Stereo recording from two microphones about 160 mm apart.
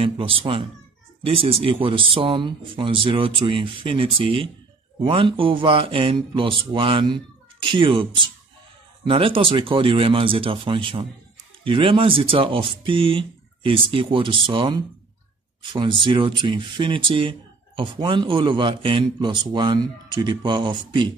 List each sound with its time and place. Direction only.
0.0 s speech: 35° right (ahead or behind)